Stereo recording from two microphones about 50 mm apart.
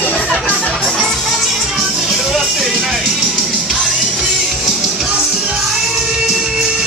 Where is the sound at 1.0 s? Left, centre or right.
Centre.